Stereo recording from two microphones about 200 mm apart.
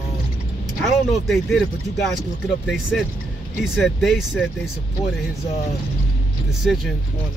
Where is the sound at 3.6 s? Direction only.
Centre (ahead or behind).